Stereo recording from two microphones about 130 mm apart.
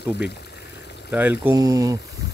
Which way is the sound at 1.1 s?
15° right (ahead or behind).